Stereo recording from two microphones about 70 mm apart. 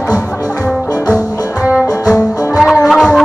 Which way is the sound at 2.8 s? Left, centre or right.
Centre.